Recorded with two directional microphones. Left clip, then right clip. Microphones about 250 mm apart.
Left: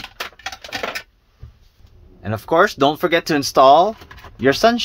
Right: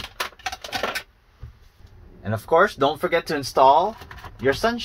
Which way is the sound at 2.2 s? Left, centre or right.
Left.